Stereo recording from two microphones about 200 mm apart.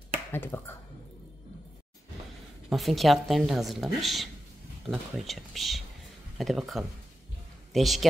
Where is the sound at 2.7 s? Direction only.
Centre (ahead or behind).